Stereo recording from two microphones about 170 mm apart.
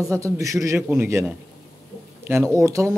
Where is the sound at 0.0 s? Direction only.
20° right (ahead or behind).